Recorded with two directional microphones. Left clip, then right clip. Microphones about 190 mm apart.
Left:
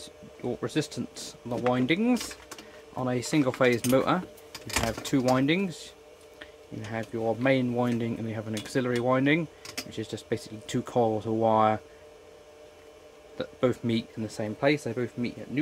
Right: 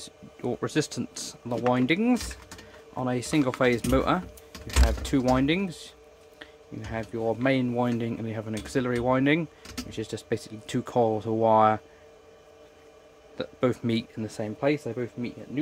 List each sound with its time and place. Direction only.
0.0 s speech: 20° right (ahead or behind)
13.4 s speech: 15° right (ahead or behind); by 15.6 s 5° left (ahead or behind)